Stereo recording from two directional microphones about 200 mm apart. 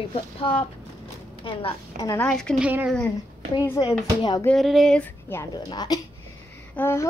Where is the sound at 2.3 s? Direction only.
5° left (ahead or behind).